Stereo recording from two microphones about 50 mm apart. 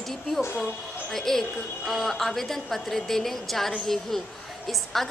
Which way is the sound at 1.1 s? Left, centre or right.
Centre.